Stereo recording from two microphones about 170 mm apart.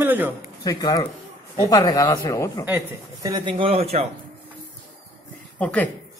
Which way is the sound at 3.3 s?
25° right (ahead or behind).